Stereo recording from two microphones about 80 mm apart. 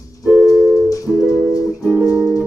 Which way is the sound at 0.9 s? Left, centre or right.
Left.